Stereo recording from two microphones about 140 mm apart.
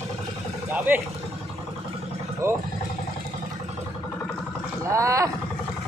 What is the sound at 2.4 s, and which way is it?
Speech, 20° right (ahead or behind).